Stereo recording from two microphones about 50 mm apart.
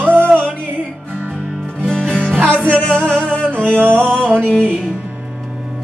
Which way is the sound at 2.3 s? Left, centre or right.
Right.